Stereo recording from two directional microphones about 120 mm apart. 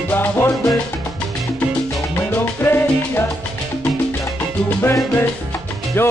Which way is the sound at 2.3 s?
20° left (ahead or behind).